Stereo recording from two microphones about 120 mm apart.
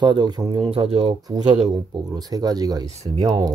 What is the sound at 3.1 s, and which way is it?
Speech, 50° right (ahead or behind).